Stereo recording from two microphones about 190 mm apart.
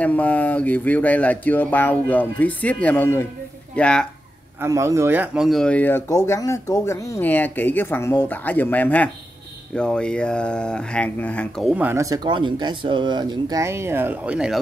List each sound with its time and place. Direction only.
0.0 s speech: 5° left (ahead or behind)
4.6 s speech: 15° right (ahead or behind); by 11.7 s 5° left (ahead or behind)
11.7 s speech: 10° right (ahead or behind)